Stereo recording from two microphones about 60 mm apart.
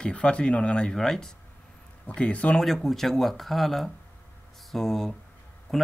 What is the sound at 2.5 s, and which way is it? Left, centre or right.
Speech, centre.